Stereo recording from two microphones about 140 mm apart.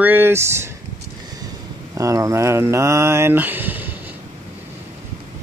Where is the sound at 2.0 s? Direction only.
25° right (ahead or behind).